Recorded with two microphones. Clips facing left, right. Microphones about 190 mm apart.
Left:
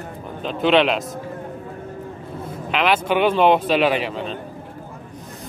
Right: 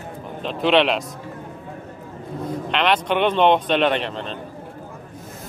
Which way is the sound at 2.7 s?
5° left (ahead or behind).